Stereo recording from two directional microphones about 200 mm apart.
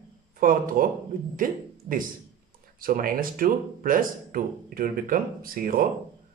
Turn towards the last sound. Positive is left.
turn(degrees=-45)  # may be behind; listen again after turning